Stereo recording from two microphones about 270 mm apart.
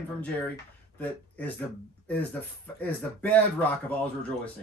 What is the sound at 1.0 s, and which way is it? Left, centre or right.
Speech, centre.